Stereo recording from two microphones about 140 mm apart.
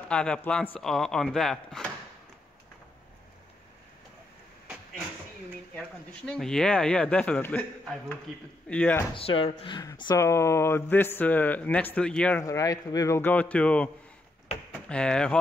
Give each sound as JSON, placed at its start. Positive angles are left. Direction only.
{"t": 0.1, "sound": "speech", "side_deg": 5}
{"t": 5.8, "sound": "a man's voice", "side_deg": 5}
{"t": 9.1, "sound": "speech", "side_deg": 40}
{"t": 9.8, "sound": "a man's voice", "side_deg": 30}
{"t": 12.4, "sound": "a man's voice", "side_deg": 25}
{"t": 14.9, "sound": "a man's voice", "side_deg": 5}